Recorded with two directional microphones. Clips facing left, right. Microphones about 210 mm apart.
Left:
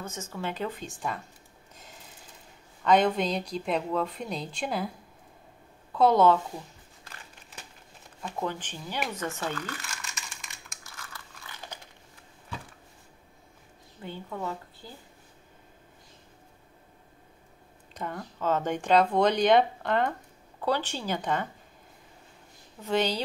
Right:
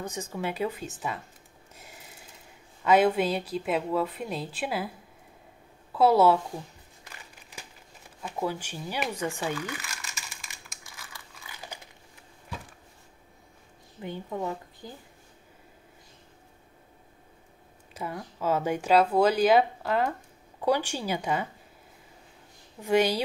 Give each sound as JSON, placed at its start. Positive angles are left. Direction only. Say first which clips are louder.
{"t": 0.0, "sound": "speech", "louder": "right 3 dB", "side_deg": -15}
{"t": 2.8, "sound": "a woman's voice", "louder": "right 1 dB", "side_deg": -5}
{"t": 5.9, "sound": "speech", "louder": "right 1 dB", "side_deg": -5}
{"t": 8.2, "sound": "speech", "louder": "right 2 dB", "side_deg": -10}
{"t": 11.0, "sound": "a sound", "louder": "left 2 dB", "side_deg": -10}
{"t": 14.0, "sound": "speech", "louder": "right 3 dB", "side_deg": -15}
{"t": 17.9, "sound": "speech", "louder": "even", "side_deg": -5}
{"t": 22.8, "sound": "speech", "louder": "right 4 dB", "side_deg": -10}